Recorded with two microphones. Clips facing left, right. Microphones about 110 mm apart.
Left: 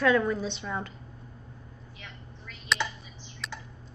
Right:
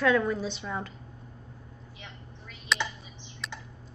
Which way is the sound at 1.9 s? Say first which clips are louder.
Even; 25° right (ahead or behind).